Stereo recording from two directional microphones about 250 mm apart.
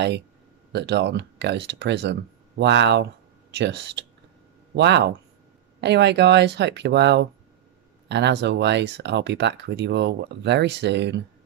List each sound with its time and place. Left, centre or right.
0.7 s speech: right